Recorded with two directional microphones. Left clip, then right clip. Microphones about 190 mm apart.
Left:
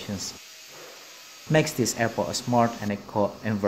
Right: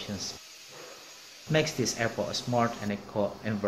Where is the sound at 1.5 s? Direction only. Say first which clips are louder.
Left 4 dB; 50° left (ahead or behind).